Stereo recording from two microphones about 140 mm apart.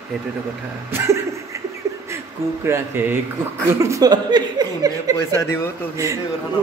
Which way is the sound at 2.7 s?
15° right (ahead or behind).